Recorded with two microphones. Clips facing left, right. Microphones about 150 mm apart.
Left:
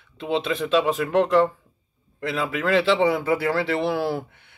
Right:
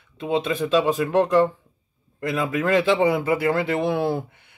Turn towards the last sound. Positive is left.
turn(degrees=-20)  # may be behind; listen again after turning